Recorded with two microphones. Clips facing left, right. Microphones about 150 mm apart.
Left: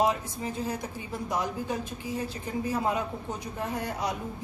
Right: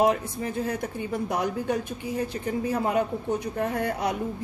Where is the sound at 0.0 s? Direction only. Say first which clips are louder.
Right 4 dB; 60° right (ahead or behind).